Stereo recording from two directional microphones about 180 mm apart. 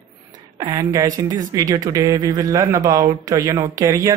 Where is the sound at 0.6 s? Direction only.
20° right (ahead or behind).